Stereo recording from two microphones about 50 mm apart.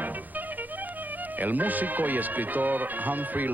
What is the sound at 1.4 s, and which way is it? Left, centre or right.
Speech, right.